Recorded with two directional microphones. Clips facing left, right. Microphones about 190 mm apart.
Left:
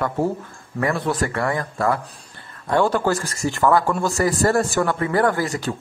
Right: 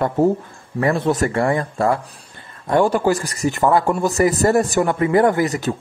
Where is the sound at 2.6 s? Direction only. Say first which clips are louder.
Right 3 dB; 15° right (ahead or behind).